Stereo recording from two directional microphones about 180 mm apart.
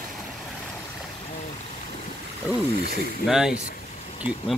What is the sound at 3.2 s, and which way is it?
Speech, 5° right (ahead or behind).